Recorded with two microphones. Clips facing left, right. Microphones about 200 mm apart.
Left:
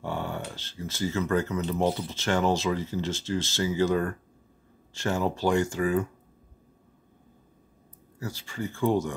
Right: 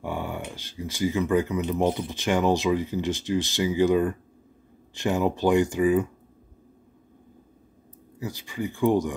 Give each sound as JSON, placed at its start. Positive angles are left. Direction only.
{"t": 0.0, "sound": "speech", "side_deg": -15}
{"t": 8.2, "sound": "speech", "side_deg": -15}